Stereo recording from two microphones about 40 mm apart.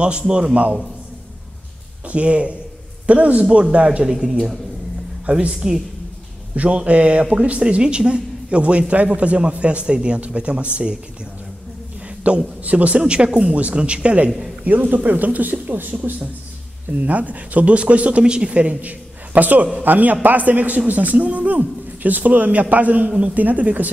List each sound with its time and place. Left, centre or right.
0.0 s speech: right
2.0 s a man's voice: right
4.0 s speech: centre
5.2 s a woman's voice: right
12.2 s a man's voice: right
14.6 s a man's voice: right
15.7 s a man's voice: right
18.6 s a man's voice: right